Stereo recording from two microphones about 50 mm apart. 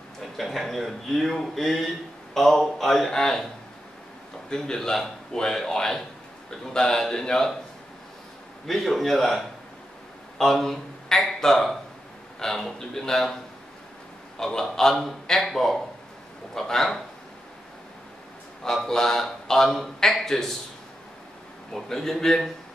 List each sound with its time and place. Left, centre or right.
0.4 s speech: centre
4.5 s a man's voice: centre
8.6 s a man's voice: centre
14.4 s a man's voice: centre
18.9 s a man's voice: centre
21.8 s a man's voice: centre